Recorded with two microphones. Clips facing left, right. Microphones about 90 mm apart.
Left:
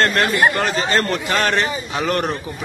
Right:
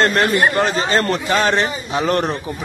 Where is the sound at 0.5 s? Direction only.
25° right (ahead or behind).